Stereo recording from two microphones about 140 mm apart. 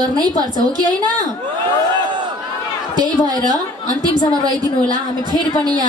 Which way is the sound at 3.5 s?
30° right (ahead or behind).